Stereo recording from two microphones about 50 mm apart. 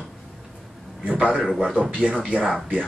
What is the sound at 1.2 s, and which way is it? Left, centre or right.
Speech, centre.